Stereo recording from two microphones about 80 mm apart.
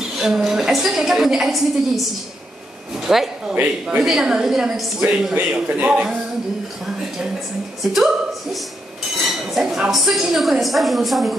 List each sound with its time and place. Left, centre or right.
0.2 s a woman's voice: centre
7.9 s a woman's voice: centre